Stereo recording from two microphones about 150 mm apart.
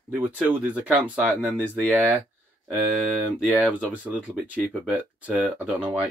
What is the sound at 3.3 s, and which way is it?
Speech, 10° right (ahead or behind).